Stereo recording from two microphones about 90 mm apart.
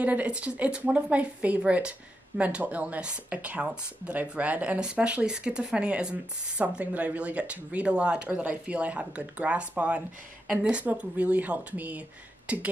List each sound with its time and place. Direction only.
0.0 s speech: 15° right (ahead or behind)